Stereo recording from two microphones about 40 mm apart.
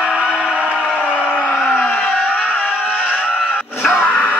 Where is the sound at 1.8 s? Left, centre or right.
Left.